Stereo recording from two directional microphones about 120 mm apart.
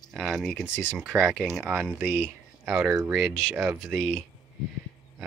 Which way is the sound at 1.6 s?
10° right (ahead or behind).